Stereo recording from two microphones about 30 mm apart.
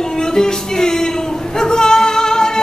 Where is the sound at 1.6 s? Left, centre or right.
Left.